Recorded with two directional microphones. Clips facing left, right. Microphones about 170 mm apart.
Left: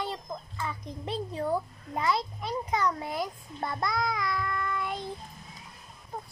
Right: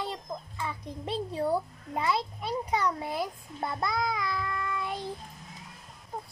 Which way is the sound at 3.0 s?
30° right (ahead or behind).